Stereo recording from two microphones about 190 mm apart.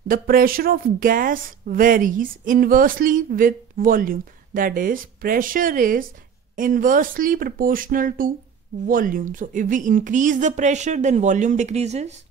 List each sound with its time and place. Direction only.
0.1 s a woman's voice: 50° right (ahead or behind)